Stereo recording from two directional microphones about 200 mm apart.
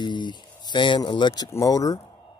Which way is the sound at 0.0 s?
20° left (ahead or behind).